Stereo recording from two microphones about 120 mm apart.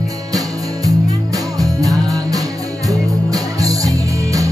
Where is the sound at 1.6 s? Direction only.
30° right (ahead or behind).